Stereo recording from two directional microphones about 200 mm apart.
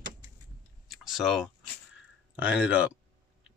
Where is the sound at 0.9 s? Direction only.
Centre (ahead or behind).